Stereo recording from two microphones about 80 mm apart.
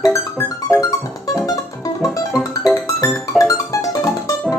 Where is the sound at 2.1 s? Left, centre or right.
Centre.